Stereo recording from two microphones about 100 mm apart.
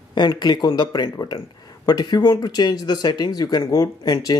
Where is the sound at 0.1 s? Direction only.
45° left (ahead or behind).